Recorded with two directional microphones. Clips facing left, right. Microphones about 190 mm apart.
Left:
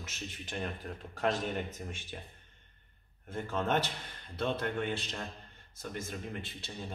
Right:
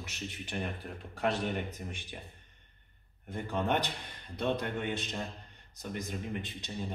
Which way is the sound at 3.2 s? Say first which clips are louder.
Right 1 dB; 15° right (ahead or behind).